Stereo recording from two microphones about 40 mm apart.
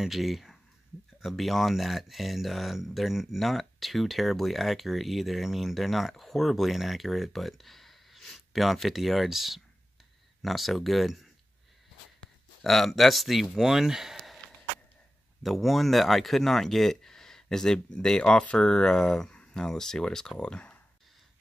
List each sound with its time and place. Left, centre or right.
0.0 s speech: centre
12.6 s speech: centre
15.4 s speech: centre